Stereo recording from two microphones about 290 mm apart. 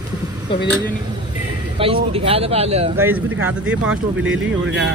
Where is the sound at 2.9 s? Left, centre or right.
Centre.